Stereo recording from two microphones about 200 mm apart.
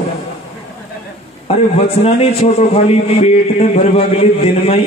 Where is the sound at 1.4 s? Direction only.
30° left (ahead or behind).